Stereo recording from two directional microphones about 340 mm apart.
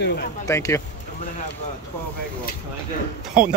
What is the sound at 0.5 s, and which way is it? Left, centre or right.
Speech, centre.